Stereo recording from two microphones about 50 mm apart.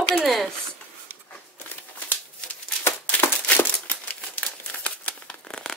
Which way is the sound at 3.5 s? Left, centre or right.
Left.